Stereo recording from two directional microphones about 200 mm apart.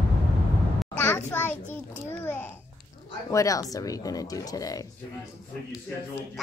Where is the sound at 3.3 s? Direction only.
15° left (ahead or behind).